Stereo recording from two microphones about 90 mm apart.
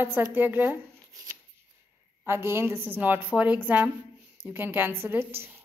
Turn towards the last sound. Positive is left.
turn(degrees=-25)  # may be behind; listen again after turning